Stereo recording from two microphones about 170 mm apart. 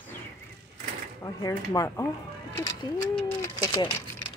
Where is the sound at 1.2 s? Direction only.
20° left (ahead or behind).